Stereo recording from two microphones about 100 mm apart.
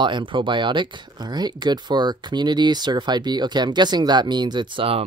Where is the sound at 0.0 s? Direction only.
55° right (ahead or behind).